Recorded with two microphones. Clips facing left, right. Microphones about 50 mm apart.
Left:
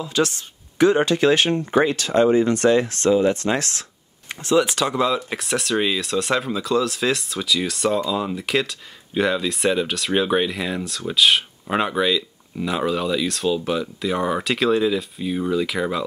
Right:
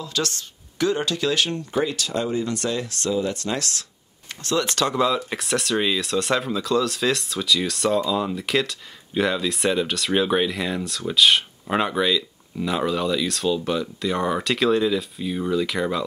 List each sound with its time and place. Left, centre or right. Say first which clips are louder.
0.0 s speech: left 5 dB; centre
4.3 s speech: left 5 dB; centre